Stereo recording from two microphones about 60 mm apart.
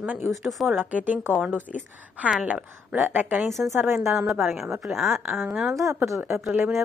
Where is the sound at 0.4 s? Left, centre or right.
Centre.